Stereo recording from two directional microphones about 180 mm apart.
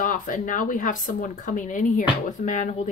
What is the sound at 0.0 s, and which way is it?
Speech, 45° left (ahead or behind).